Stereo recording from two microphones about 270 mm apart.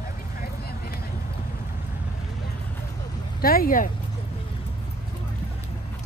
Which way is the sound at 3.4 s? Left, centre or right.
Left.